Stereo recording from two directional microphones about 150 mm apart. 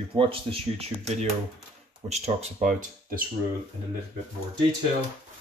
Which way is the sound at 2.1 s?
45° right (ahead or behind).